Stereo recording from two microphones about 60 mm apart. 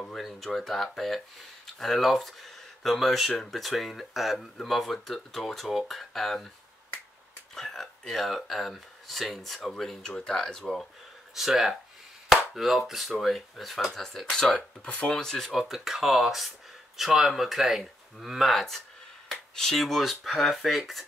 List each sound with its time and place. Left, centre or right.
0.1 s speech: centre
7.5 s speech: centre
11.3 s speech: centre
14.9 s speech: left
15.1 s speech: centre